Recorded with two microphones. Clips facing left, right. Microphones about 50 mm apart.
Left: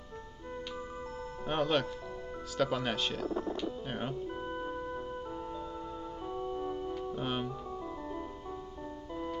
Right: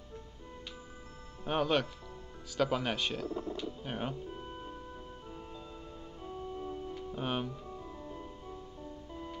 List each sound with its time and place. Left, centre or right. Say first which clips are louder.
1.5 s speech: even; centre
3.3 s speech: left 3 dB; left
3.8 s speech: left 1 dB; centre
4.3 s music: left 6 dB; left
6.4 s organ: left 4 dB; left
7.2 s speech: right 2 dB; centre
9.1 s music: left 8 dB; left